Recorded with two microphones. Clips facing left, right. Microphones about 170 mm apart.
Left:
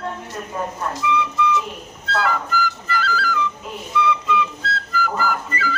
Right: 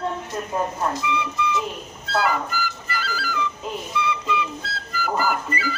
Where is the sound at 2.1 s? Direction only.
5° right (ahead or behind).